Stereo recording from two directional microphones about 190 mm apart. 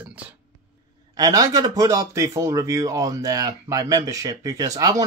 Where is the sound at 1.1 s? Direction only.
20° right (ahead or behind).